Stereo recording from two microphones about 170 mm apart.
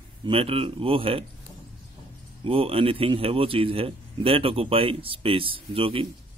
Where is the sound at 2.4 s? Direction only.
35° right (ahead or behind).